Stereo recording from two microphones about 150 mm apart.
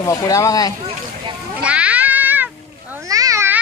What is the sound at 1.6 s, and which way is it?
Cat, 10° right (ahead or behind).